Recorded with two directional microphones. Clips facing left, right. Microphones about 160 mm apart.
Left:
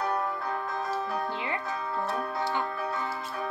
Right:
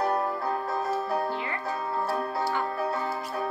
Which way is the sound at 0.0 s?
30° right (ahead or behind).